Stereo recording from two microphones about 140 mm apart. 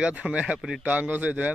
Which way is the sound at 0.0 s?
10° right (ahead or behind).